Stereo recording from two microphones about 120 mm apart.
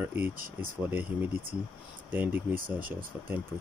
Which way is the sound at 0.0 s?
15° right (ahead or behind).